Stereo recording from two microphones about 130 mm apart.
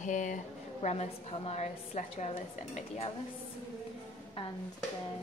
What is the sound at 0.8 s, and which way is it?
A woman's voice, 55° left (ahead or behind).